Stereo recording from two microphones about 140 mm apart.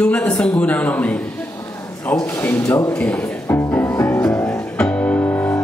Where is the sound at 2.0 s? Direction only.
15° left (ahead or behind).